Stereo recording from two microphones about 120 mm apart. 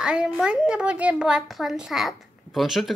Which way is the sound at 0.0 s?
5° right (ahead or behind).